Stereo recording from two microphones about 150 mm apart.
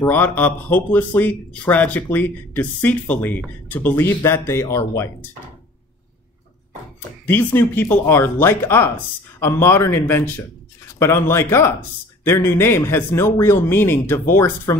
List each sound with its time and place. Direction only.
0.0 s speech: 10° left (ahead or behind)
7.2 s speech: 15° left (ahead or behind)